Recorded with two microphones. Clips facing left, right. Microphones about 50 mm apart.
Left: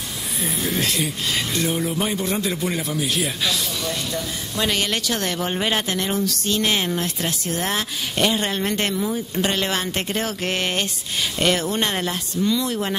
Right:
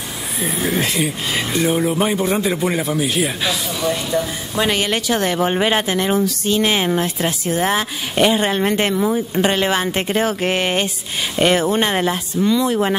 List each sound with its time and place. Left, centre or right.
0.4 s a man's voice: centre